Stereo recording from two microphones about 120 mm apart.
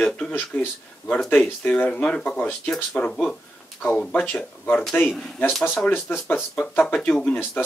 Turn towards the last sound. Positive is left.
turn(degrees=10)  # may be behind; listen again after turning